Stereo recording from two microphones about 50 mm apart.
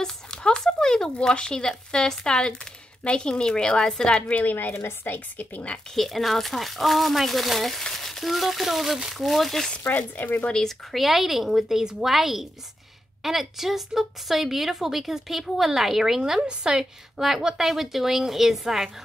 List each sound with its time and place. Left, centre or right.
0.0 s a woman's voice: centre
4.3 s a woman's voice: left
5.9 s a woman's voice: centre
9.8 s a woman's voice: left
10.5 s a woman's voice: centre
11.0 s a woman's voice: centre